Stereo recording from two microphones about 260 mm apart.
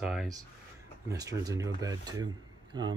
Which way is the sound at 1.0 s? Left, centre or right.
Centre.